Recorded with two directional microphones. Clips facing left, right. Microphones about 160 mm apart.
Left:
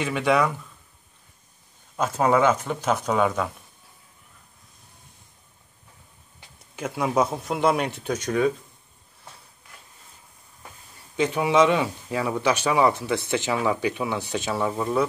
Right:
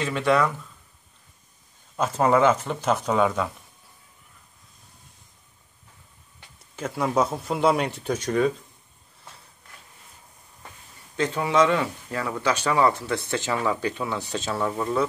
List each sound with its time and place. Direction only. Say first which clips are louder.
0.0 s speech: even; 10° left (ahead or behind)
2.0 s speech: even; 5° left (ahead or behind)
6.7 s speech: even; 5° left (ahead or behind)
11.1 s speech: left 2 dB; 15° left (ahead or behind)